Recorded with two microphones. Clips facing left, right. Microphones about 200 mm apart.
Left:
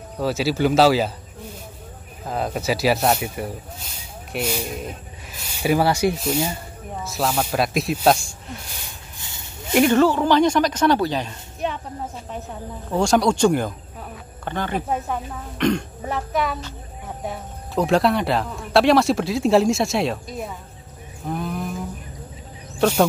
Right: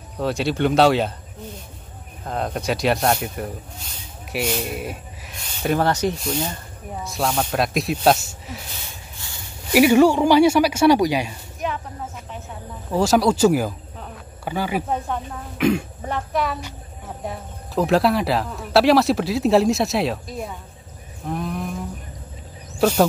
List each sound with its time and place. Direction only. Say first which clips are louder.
0.2 s speech: left 1 dB; 5° left (ahead or behind)
2.2 s speech: left 1 dB; 5° left (ahead or behind)
9.7 s speech: right 2 dB; 10° right (ahead or behind)
11.6 s a sound: even; 30° left (ahead or behind)
12.9 s speech: right 1 dB; 5° right (ahead or behind)
21.3 s a sound: even; centre (ahead or behind)
22.8 s speech: right 1 dB; 5° right (ahead or behind)